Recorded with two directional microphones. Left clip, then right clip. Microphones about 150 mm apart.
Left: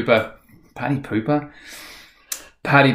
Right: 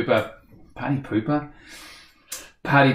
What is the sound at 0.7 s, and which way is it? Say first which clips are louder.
Speech: left 2 dB; 15° left (ahead or behind).